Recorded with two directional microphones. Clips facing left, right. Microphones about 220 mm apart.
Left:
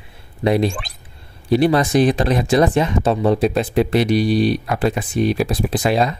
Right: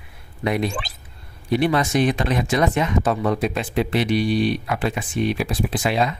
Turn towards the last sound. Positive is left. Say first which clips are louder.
# left 4 dB
turn(degrees=40)  # may be behind; listen again after turning